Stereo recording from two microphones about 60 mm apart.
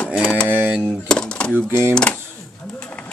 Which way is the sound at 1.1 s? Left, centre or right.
Centre.